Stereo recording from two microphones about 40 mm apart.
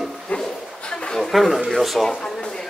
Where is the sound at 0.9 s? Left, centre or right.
Centre.